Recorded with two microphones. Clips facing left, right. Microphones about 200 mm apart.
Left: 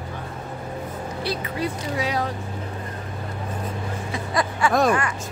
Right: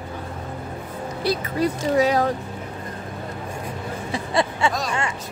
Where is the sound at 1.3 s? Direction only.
45° right (ahead or behind).